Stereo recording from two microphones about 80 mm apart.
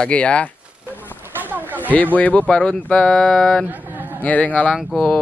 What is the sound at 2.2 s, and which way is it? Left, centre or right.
Speech, centre.